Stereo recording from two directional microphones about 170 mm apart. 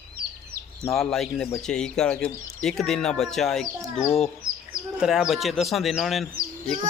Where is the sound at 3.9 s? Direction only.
40° left (ahead or behind).